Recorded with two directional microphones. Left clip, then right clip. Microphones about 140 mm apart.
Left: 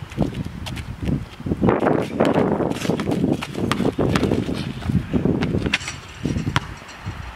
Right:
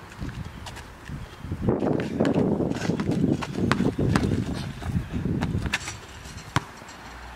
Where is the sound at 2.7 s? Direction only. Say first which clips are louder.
Left 5 dB; 10° left (ahead or behind).